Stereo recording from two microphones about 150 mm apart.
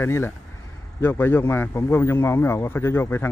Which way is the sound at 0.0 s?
15° left (ahead or behind).